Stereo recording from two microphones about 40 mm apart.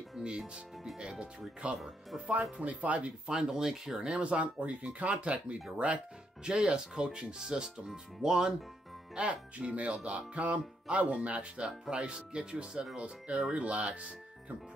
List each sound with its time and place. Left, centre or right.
0.2 s speech: right
1.8 s speech: centre
2.6 s music: right
3.3 s speech: centre
4.1 s music: right
6.4 s speech: right
9.1 s music: right
11.9 s speech: right
13.5 s music: right